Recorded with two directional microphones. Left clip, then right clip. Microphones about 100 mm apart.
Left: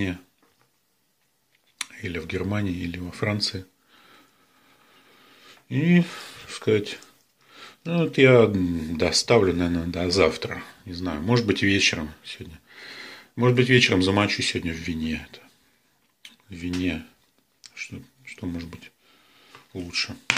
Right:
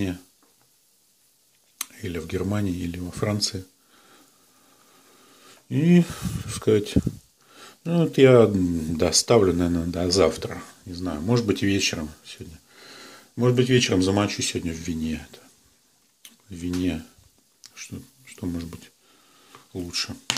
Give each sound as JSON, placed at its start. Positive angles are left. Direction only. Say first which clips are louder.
{"t": 1.8, "sound": "speech", "louder": "left 1 dB", "side_deg": -30}
{"t": 5.2, "sound": "speech", "louder": "left 1 dB", "side_deg": -35}
{"t": 10.5, "sound": "speech", "louder": "left 2 dB", "side_deg": -15}
{"t": 16.2, "sound": "a sound", "louder": "even", "side_deg": -30}
{"t": 17.8, "sound": "speech", "louder": "left 2 dB", "side_deg": -45}